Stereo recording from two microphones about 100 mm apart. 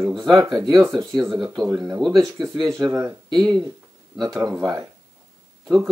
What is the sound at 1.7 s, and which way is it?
Speech, 25° right (ahead or behind).